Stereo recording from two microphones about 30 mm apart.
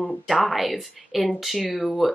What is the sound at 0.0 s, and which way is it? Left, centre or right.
Speech, centre.